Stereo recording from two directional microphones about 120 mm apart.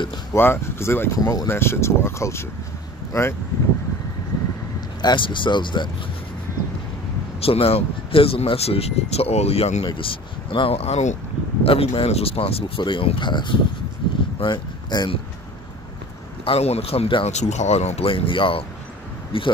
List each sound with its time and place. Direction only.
0.3 s speech: 20° left (ahead or behind)
1.1 s speech: 30° left (ahead or behind)
1.5 s speech: 20° left (ahead or behind)
5.0 s speech: 40° left (ahead or behind)
7.3 s speech: 55° left (ahead or behind)
10.5 s speech: 50° left (ahead or behind); by 11.1 s 70° left (ahead or behind)
11.6 s speech: 50° left (ahead or behind)
14.0 s a sound: 40° left (ahead or behind)
14.4 s speech: 35° left (ahead or behind)
16.4 s speech: 60° left (ahead or behind)
17.3 s speech: 70° left (ahead or behind); by 19.5 s 45° left (ahead or behind)